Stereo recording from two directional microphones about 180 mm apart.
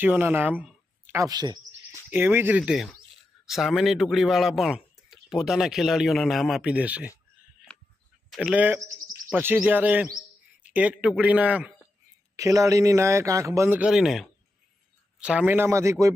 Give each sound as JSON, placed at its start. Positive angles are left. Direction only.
{"t": 0.0, "sound": "speech", "side_deg": -10}
{"t": 2.0, "sound": "a man's voice", "side_deg": -10}
{"t": 8.3, "sound": "a man's voice", "side_deg": -5}
{"t": 12.4, "sound": "a man's voice", "side_deg": -20}